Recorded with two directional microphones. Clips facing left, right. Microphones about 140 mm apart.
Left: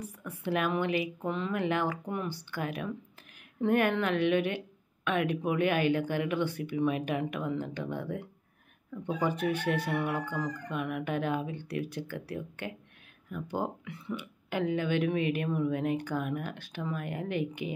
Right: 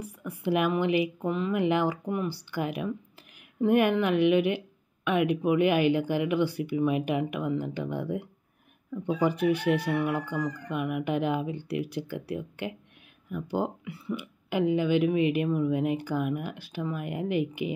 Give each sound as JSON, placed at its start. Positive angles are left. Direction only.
{"t": 0.0, "sound": "speech", "side_deg": -10}